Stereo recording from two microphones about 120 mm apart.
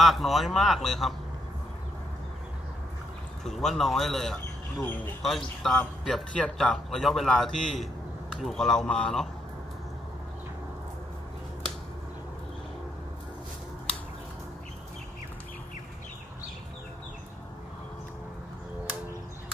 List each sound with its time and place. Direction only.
0.0 s speech: centre (ahead or behind)
3.4 s speech: centre (ahead or behind)
4.8 s speech: 15° left (ahead or behind)
5.2 s speech: 5° left (ahead or behind)